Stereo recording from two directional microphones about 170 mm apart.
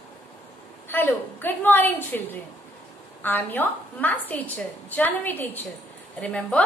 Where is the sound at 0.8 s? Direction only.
10° left (ahead or behind).